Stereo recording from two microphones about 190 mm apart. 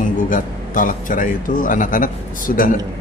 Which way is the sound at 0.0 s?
45° left (ahead or behind).